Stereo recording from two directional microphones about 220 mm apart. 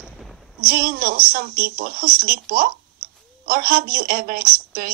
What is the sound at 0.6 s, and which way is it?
A woman's voice, 40° right (ahead or behind).